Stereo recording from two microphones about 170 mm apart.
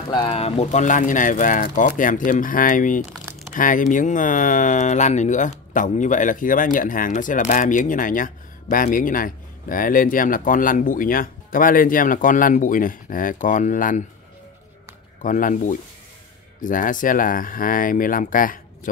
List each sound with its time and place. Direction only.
0.1 s speech: 30° left (ahead or behind); by 14.0 s 50° left (ahead or behind)
15.2 s speech: 50° left (ahead or behind)